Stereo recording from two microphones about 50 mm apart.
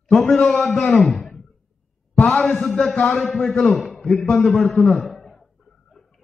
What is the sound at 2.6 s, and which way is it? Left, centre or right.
A man's voice, centre.